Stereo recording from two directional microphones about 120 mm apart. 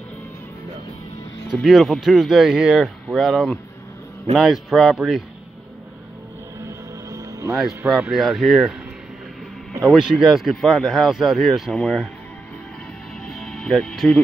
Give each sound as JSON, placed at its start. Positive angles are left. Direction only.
{"t": 1.5, "sound": "speech", "side_deg": 0}
{"t": 6.6, "sound": "music", "side_deg": -25}
{"t": 7.5, "sound": "speech", "side_deg": -5}
{"t": 9.9, "sound": "speech", "side_deg": -5}
{"t": 13.2, "sound": "music", "side_deg": 5}